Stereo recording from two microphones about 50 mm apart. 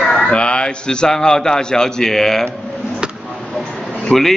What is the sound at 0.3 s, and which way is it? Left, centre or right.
A man's voice, left.